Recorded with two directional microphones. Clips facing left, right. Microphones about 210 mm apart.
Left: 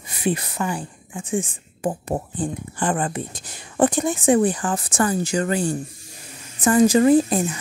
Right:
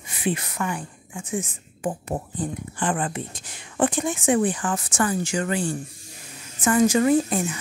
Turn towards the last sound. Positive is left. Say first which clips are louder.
# left 4 dB
turn(degrees=35)  # may be behind; listen again after turning